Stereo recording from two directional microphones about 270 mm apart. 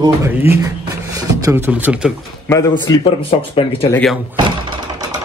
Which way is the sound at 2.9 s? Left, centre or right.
Centre.